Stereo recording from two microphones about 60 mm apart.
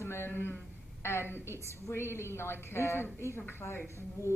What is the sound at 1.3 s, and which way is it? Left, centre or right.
A woman's voice, left.